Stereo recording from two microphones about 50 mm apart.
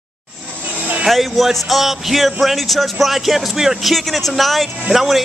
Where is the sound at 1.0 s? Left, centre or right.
Centre.